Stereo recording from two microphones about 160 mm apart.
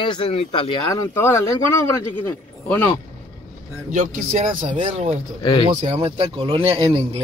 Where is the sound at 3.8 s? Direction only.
50° right (ahead or behind); by 7.0 s 35° right (ahead or behind).